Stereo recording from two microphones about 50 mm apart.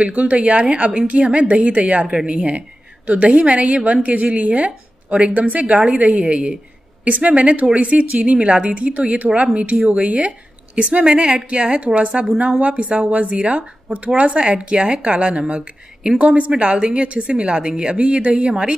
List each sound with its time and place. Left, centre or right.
0.0 s speech: right
5.7 s a woman's voice: centre
12.1 s a woman's voice: centre
17.9 s speech: right